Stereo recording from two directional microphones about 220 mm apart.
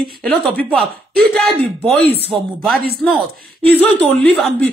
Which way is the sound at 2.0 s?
45° right (ahead or behind).